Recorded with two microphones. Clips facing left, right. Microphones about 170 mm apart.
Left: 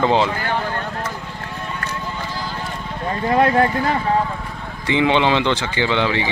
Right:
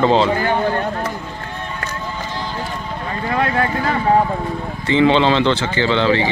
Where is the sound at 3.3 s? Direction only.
30° left (ahead or behind).